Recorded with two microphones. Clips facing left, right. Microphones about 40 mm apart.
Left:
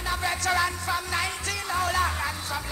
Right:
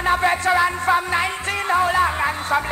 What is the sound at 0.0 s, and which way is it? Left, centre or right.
Music, right.